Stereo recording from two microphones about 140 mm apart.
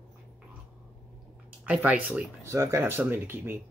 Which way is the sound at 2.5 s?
20° right (ahead or behind).